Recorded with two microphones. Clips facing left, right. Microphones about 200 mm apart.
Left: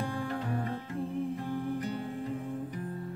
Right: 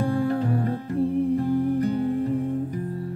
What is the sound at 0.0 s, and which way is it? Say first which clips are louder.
Music: right 11 dB; 40° right (ahead or behind).